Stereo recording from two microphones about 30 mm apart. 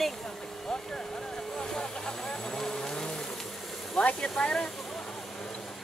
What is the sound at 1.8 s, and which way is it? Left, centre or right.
Speech, left.